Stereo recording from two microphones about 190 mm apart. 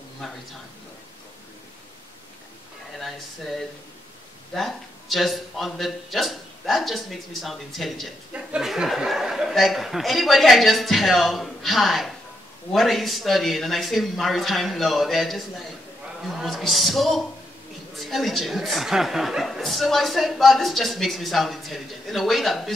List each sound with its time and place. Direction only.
3.0 s a man's voice: centre (ahead or behind)